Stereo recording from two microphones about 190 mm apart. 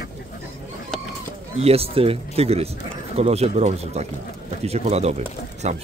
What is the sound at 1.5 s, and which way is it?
Speech, 30° right (ahead or behind).